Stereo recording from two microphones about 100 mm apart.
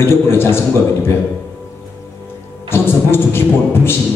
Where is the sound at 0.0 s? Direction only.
25° left (ahead or behind).